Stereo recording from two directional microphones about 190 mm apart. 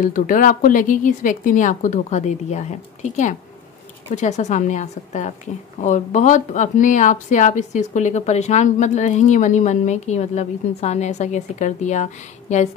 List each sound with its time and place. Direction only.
0.0 s a woman's voice: 45° left (ahead or behind)